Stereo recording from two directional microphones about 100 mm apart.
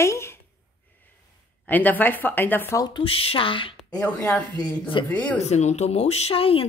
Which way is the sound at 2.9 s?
70° left (ahead or behind).